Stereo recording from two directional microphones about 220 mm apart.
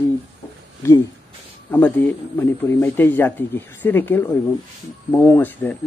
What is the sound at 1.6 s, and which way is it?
Speech, 10° left (ahead or behind).